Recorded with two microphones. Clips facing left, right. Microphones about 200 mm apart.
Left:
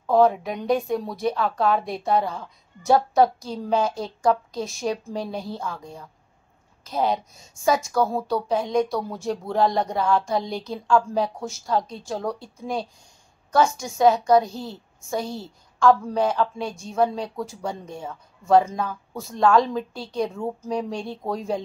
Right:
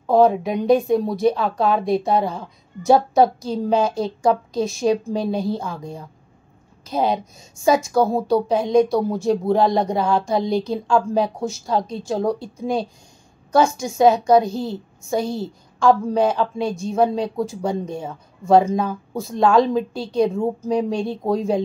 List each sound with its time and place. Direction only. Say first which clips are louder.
0.0 s a woman's voice: right 3 dB; 25° right (ahead or behind)